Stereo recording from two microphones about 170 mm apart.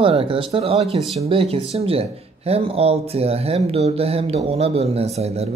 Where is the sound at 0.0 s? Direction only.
35° right (ahead or behind).